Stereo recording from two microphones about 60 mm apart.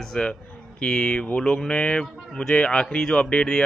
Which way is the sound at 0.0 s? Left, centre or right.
Centre.